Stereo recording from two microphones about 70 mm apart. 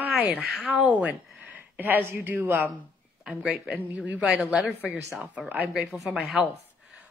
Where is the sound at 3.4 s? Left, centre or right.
Centre.